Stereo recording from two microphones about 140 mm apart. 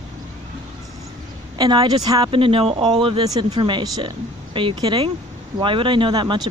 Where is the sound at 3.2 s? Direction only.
30° right (ahead or behind).